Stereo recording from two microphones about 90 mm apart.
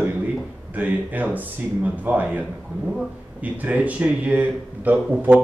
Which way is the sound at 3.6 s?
15° right (ahead or behind).